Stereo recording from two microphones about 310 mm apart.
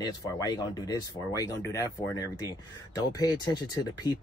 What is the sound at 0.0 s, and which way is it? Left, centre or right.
Speech, centre.